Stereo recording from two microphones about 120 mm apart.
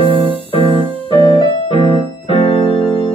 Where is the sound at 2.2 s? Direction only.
45° left (ahead or behind).